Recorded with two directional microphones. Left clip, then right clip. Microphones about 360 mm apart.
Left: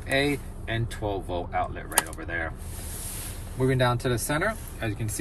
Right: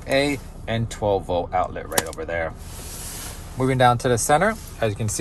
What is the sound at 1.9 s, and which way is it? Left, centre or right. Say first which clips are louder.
Speech: right 4 dB; right.